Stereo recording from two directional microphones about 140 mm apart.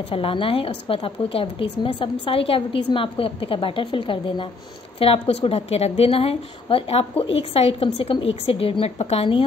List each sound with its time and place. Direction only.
0.1 s a woman's voice: 40° left (ahead or behind)